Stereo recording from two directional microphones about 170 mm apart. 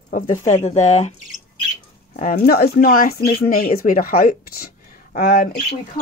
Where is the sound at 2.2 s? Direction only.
55° left (ahead or behind).